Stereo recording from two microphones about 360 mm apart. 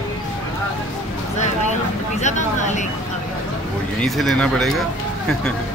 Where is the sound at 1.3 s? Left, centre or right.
Centre.